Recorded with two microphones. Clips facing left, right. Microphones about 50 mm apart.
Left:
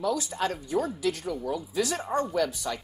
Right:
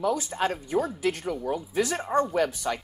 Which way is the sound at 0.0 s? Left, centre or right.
Right.